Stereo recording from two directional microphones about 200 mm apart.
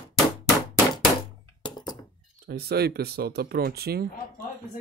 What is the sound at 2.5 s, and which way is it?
Speech, 50° right (ahead or behind).